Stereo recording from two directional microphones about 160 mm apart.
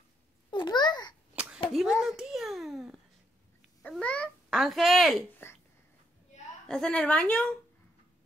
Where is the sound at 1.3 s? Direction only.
5° right (ahead or behind).